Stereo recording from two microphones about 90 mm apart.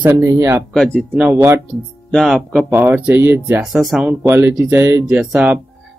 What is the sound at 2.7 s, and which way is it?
Speech, 20° right (ahead or behind).